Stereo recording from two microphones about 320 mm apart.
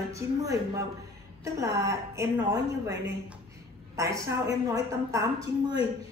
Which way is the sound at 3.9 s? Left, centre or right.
Centre.